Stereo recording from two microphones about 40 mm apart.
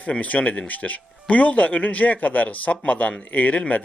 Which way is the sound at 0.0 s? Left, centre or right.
Left.